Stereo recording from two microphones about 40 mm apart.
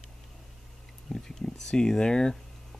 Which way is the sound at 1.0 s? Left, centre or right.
Centre.